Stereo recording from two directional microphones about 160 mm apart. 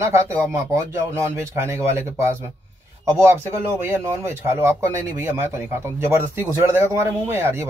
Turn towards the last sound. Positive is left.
turn(degrees=-15)  # may be behind; listen again after turning